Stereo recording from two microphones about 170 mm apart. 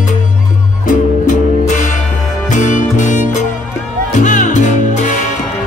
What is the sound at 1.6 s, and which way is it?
Music, 45° left (ahead or behind).